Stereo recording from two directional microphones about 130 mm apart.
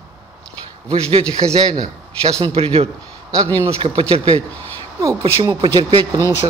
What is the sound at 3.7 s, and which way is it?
Speech, 40° right (ahead or behind).